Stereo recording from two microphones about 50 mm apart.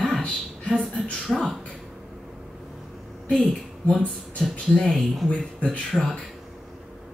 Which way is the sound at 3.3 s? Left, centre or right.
Centre.